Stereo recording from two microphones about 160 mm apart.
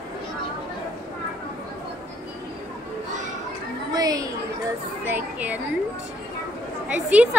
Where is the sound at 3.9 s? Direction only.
25° right (ahead or behind).